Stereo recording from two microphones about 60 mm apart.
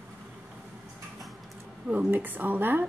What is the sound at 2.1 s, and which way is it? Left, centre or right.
Speech, right.